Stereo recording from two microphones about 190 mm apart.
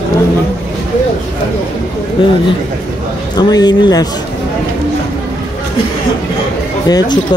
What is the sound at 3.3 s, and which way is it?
Speech, 20° left (ahead or behind).